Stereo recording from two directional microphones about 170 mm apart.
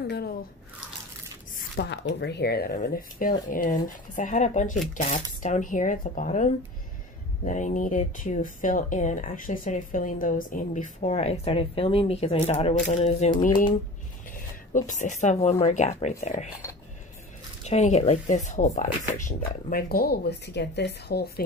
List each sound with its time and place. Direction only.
0.0 s speech: 70° left (ahead or behind)
1.8 s speech: 85° left; by 16.2 s 45° left (ahead or behind)
16.6 s speech: 15° left (ahead or behind)
17.6 s speech: 40° left (ahead or behind); by 21.3 s 75° left (ahead or behind)